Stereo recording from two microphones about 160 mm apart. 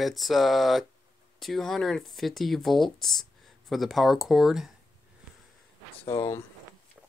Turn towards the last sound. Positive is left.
turn(degrees=20)  # may be behind; listen again after turning